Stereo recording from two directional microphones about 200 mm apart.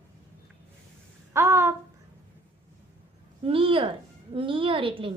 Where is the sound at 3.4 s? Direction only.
25° right (ahead or behind).